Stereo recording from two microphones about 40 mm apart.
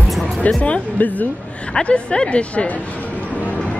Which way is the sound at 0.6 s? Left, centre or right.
Left.